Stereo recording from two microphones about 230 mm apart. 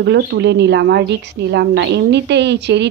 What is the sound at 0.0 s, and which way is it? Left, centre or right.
Speech, right.